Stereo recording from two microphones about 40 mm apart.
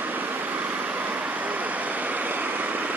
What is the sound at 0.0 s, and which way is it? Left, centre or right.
Vehicle, right.